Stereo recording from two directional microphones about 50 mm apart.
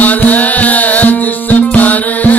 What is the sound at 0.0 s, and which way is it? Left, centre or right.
Music, left.